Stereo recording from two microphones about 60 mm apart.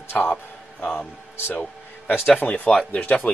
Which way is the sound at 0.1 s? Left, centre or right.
Left.